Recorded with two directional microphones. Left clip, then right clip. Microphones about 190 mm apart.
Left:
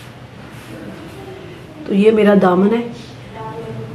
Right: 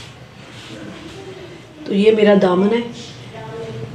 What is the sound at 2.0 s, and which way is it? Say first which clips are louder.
Speech: even; 15° left (ahead or behind).